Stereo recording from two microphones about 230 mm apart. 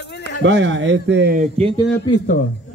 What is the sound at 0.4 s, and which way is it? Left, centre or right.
A man's voice, right.